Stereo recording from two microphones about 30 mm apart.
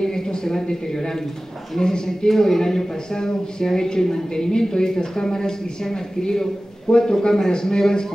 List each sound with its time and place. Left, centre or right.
0.0 s a woman's voice: left